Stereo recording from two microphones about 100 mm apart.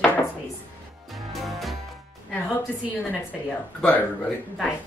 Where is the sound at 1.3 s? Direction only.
Centre (ahead or behind).